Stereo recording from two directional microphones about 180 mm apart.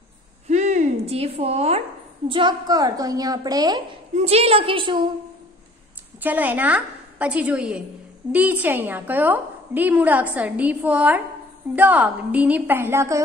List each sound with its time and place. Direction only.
0.5 s a sound: 40° right (ahead or behind)
2.2 s a woman's voice: 25° right (ahead or behind)
4.1 s a woman's voice: 35° right (ahead or behind)
6.2 s a woman's voice: 10° right (ahead or behind)